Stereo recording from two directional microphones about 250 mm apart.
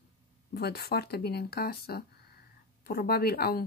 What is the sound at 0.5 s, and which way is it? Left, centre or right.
Speech, left.